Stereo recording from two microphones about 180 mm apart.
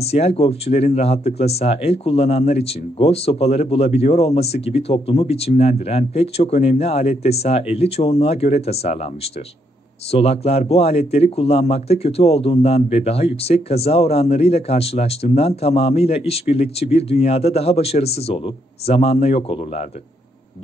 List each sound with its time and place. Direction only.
0.0 s speech: 35° left (ahead or behind)